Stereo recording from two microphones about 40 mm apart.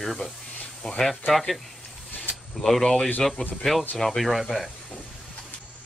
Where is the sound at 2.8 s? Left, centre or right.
Centre.